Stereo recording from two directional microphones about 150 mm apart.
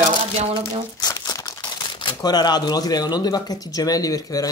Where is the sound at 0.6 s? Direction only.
25° left (ahead or behind).